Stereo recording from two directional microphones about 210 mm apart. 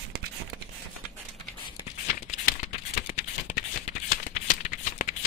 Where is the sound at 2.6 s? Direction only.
35° left (ahead or behind).